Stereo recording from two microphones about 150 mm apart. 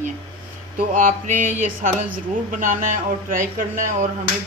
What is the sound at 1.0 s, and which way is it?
Speech, 65° right (ahead or behind).